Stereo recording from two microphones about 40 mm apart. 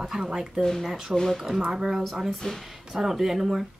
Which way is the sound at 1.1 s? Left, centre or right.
Centre.